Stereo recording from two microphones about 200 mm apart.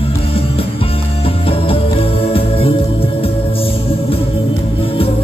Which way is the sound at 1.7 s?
30° left (ahead or behind).